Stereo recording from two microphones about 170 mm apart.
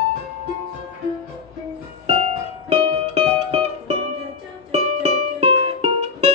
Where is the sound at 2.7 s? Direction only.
35° right (ahead or behind).